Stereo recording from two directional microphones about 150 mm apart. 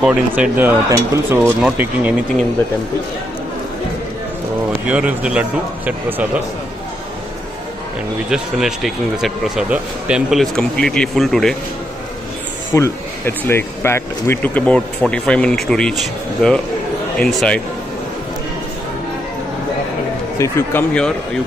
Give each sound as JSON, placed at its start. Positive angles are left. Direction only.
{"t": 0.0, "sound": "a man's voice", "side_deg": -5}
{"t": 4.8, "sound": "a man's voice", "side_deg": -10}
{"t": 8.3, "sound": "speech", "side_deg": -5}
{"t": 12.7, "sound": "speech", "side_deg": 15}
{"t": 20.3, "sound": "speech", "side_deg": 20}